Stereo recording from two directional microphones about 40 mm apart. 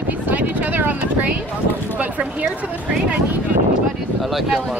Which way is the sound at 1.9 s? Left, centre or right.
Right.